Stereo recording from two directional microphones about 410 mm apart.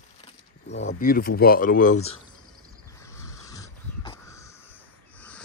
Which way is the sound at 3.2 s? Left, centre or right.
Centre.